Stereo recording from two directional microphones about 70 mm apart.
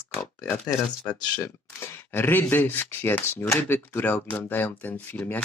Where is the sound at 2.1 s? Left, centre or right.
Left.